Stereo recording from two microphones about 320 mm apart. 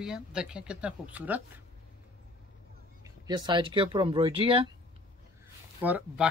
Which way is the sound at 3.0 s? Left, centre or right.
Centre.